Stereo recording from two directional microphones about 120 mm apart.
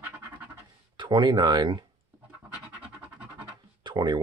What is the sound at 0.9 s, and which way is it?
Speech, 40° right (ahead or behind).